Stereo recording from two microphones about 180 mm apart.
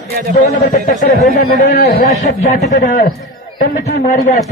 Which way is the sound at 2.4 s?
40° left (ahead or behind).